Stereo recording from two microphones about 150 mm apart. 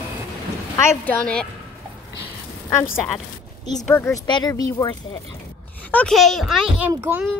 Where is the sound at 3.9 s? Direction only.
15° left (ahead or behind).